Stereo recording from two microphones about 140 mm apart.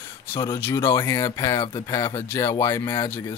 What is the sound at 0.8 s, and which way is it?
Speech, 20° left (ahead or behind).